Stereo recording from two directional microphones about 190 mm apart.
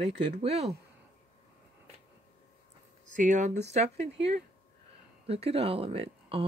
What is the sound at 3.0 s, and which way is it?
Speech, 40° right (ahead or behind).